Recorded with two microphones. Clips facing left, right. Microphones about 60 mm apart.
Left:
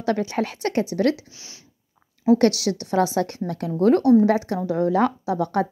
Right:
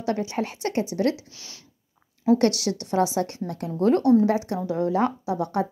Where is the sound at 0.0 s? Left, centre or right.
Left.